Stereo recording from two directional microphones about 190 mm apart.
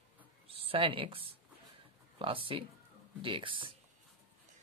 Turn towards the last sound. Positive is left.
turn(degrees=-25)  # may be behind; listen again after turning